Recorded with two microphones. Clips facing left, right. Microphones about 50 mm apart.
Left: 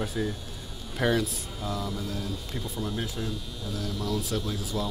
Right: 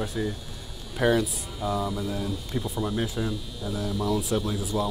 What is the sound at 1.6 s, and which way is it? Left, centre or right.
Speech, centre.